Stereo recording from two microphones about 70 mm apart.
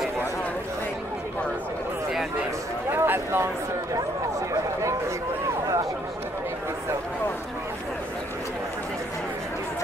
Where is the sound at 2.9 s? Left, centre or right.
Right.